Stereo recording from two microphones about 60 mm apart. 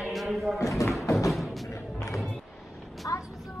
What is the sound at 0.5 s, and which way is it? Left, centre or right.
Speech, left.